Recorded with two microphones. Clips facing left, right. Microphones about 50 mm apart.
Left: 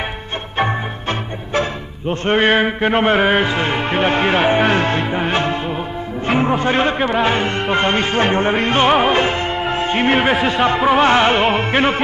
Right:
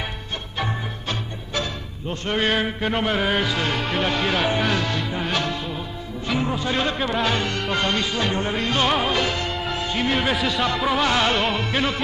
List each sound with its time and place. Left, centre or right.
0.6 s music: left